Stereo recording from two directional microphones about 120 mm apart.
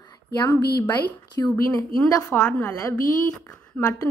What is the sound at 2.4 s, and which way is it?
Speech, 10° left (ahead or behind).